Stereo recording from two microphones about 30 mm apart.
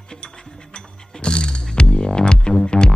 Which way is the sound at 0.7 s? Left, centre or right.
Left.